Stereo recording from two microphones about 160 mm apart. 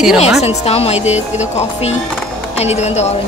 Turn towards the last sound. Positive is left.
turn(degrees=45)  # may be behind; listen again after turning